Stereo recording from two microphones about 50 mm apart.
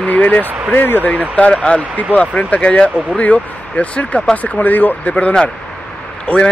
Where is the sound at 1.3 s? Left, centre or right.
Centre; by 5.1 s left.